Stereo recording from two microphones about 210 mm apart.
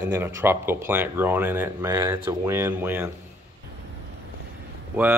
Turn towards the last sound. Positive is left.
turn(degrees=-10)  # may be behind; listen again after turning